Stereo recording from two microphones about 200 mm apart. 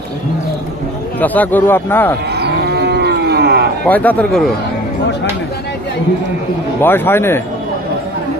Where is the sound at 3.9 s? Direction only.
10° left (ahead or behind).